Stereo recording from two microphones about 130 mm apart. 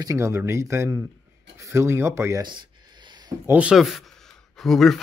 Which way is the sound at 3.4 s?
10° right (ahead or behind).